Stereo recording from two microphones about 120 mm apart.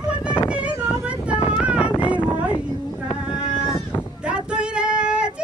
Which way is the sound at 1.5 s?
10° right (ahead or behind).